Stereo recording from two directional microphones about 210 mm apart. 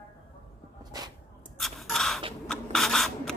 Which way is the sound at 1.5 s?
Centre (ahead or behind).